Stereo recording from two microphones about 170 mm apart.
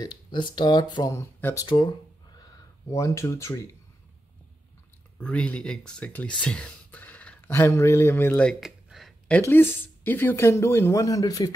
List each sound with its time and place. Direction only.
0.0 s speech: 25° left (ahead or behind)
5.2 s speech: 5° left (ahead or behind)
9.4 s speech: 15° left (ahead or behind)